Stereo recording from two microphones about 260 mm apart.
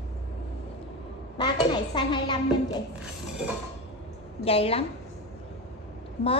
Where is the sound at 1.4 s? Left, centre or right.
Centre.